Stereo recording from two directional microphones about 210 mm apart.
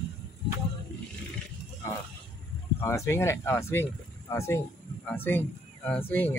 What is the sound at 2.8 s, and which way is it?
Speech, 15° left (ahead or behind).